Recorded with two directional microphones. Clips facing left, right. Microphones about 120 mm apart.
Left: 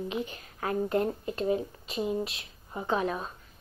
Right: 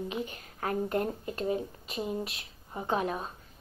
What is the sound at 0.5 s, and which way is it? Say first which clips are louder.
Speech: left 1 dB; 40° right (ahead or behind).